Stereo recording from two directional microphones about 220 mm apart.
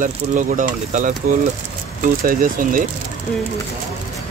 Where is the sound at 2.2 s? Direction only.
40° right (ahead or behind).